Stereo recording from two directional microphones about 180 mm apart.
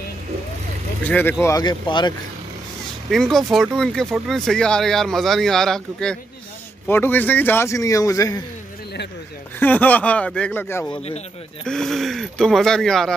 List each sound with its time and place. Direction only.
1.0 s a man's voice: 10° left (ahead or behind)
1.4 s speech: 20° left (ahead or behind)
3.1 s a man's voice: centre (ahead or behind); by 8.5 s 20° left (ahead or behind)
9.6 s a man's voice: 10° left (ahead or behind)